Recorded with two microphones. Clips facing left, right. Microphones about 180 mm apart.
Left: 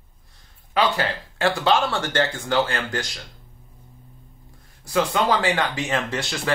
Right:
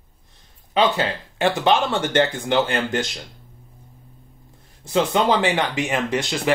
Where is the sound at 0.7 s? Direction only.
20° right (ahead or behind).